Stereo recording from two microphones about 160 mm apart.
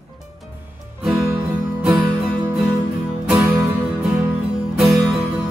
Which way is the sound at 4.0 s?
5° right (ahead or behind).